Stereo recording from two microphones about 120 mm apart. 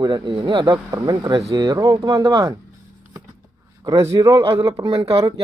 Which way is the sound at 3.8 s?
25° right (ahead or behind).